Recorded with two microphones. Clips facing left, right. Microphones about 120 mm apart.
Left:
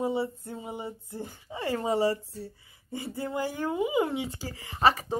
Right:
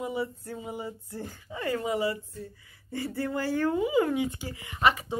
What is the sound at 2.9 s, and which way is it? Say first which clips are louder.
Speech: right 2 dB; 20° left (ahead or behind).